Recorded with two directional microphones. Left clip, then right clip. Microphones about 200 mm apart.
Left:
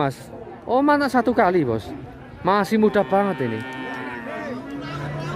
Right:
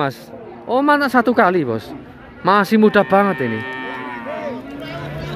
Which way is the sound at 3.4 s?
55° left (ahead or behind).